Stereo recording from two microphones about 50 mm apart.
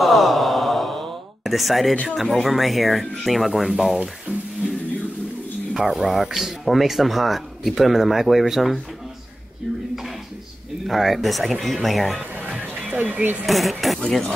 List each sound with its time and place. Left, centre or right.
0.0 s a sound: centre
2.0 s speech: centre
5.7 s speech: centre
10.9 s speech: centre
12.9 s speech: right
13.5 s speech: centre